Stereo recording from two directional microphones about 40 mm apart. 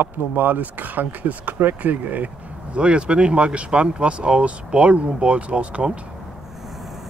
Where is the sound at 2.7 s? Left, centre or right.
Right.